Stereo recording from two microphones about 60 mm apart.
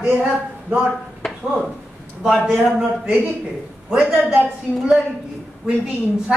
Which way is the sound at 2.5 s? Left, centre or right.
Centre.